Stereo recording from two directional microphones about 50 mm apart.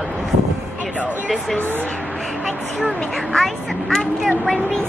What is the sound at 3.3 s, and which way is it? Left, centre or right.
Speech, centre.